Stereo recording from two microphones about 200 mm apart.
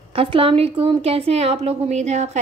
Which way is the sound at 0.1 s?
25° right (ahead or behind).